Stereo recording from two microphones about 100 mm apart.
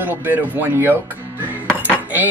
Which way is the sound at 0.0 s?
15° right (ahead or behind).